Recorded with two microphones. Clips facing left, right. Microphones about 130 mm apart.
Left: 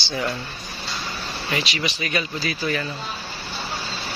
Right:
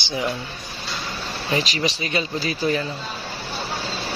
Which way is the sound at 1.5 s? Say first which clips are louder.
Right 4 dB; 35° right (ahead or behind).